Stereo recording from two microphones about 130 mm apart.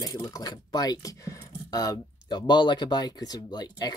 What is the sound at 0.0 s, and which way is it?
Speech, 30° left (ahead or behind).